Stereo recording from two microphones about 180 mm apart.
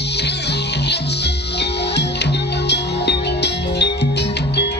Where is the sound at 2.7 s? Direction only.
70° left (ahead or behind).